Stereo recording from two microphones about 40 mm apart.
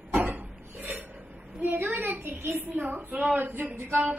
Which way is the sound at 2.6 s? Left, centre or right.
Right.